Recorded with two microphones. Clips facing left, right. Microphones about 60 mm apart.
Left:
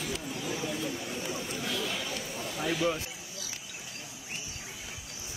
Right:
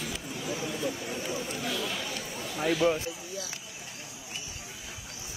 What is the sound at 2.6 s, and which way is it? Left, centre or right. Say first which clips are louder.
Speech: right 4 dB; right.